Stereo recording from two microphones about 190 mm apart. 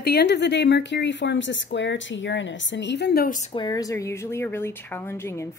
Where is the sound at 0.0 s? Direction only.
55° left (ahead or behind).